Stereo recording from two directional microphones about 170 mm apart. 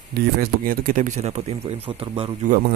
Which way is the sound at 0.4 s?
55° right (ahead or behind).